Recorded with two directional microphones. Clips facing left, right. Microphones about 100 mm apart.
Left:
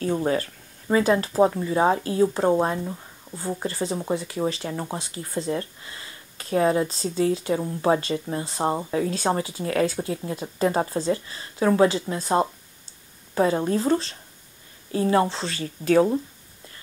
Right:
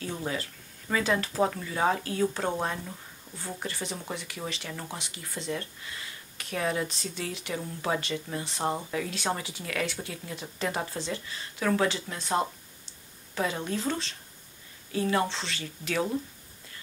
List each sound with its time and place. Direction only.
0.0 s speech: 45° left (ahead or behind)
1.0 s speech: 35° left (ahead or behind)